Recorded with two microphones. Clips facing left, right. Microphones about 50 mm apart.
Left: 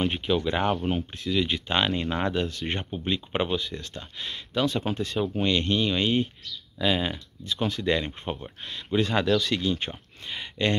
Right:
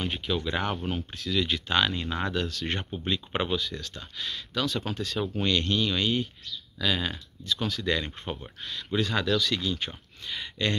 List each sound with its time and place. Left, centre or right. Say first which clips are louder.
0.0 s speech: left 5 dB; centre
3.8 s speech: even; left
5.0 s speech: left 1 dB; centre; by 10.8 s left